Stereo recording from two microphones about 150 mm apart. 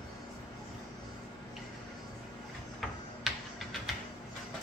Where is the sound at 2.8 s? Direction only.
Centre (ahead or behind).